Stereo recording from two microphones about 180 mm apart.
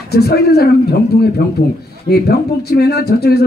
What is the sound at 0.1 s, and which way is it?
Speech, 60° left (ahead or behind).